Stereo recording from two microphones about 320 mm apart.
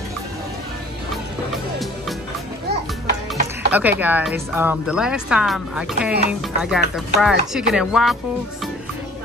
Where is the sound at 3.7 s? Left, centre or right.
Centre.